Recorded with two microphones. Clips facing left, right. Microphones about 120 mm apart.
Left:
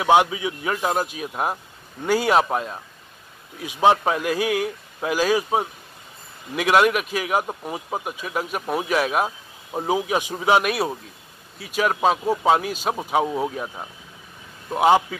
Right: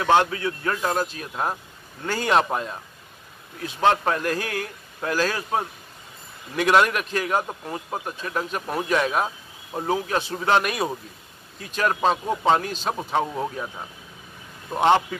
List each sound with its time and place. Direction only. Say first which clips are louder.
0.0 s a man's voice: left 2 dB; 10° left (ahead or behind)